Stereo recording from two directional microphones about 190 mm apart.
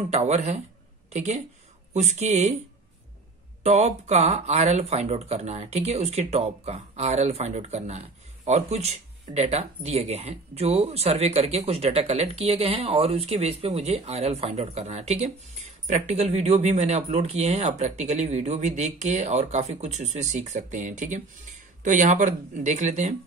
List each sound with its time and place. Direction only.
0.1 s speech: 35° right (ahead or behind)
3.6 s speech: 35° right (ahead or behind)